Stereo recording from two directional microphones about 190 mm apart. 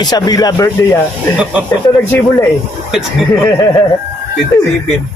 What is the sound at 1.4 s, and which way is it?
Speech, 5° right (ahead or behind).